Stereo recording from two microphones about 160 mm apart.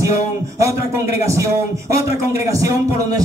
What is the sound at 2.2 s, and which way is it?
Speech, 20° right (ahead or behind).